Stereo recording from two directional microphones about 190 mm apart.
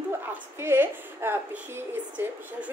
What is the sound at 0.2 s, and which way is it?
A woman's voice, 10° right (ahead or behind).